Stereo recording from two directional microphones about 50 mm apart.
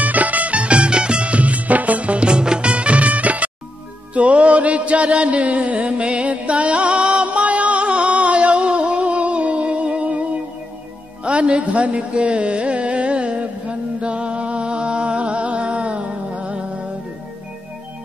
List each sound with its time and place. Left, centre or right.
0.0 s music: right
11.2 s carnatic music: right